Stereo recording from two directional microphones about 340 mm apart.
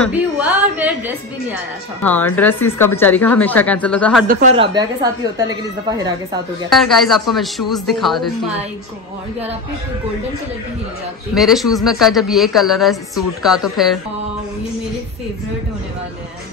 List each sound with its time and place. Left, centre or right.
0.0 s speech: centre
2.0 s speech: centre
4.3 s speech: right
6.7 s speech: centre
11.3 s speech: centre